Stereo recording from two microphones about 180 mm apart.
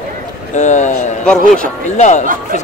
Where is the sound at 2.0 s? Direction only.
40° left (ahead or behind).